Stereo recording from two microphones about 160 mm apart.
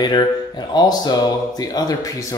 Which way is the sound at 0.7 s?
25° left (ahead or behind).